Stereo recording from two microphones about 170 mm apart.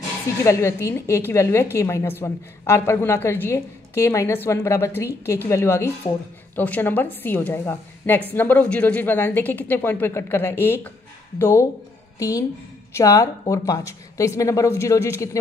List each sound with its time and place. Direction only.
0.4 s a woman's voice: 15° left (ahead or behind)